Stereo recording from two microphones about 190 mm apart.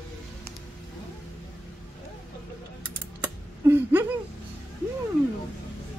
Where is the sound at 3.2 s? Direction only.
10° right (ahead or behind).